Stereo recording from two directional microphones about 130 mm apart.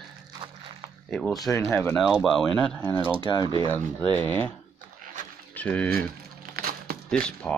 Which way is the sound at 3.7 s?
15° left (ahead or behind).